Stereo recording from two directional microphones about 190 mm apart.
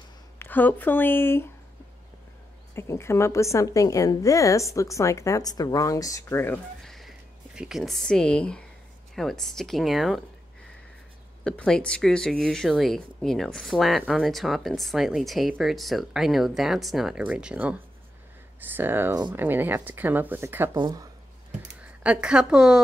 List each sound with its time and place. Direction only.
0.4 s a woman's voice: 10° left (ahead or behind)
2.7 s a woman's voice: 15° left (ahead or behind)
11.4 s speech: 5° left (ahead or behind); by 21.1 s 20° right (ahead or behind)
22.0 s speech: 5° right (ahead or behind)